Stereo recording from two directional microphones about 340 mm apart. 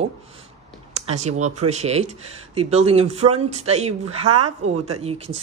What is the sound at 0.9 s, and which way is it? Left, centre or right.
Speech, centre.